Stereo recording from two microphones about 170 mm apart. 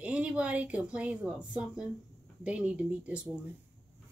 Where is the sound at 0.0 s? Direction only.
5° right (ahead or behind).